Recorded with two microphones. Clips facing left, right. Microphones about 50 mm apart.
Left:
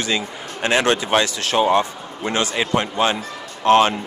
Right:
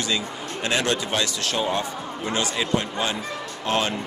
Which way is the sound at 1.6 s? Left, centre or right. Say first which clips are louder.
Left 10 dB; left.